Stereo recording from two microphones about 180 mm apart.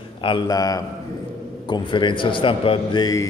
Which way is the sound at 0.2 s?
25° left (ahead or behind).